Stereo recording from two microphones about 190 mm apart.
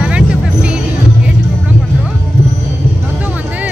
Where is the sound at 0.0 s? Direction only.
5° right (ahead or behind).